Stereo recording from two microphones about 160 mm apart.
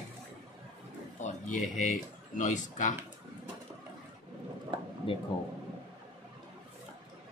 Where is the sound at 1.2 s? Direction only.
50° left (ahead or behind).